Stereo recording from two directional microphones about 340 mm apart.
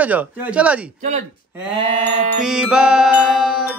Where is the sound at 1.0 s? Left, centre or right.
Right.